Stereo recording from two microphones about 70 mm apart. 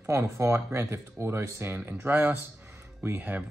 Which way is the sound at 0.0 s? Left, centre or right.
Right.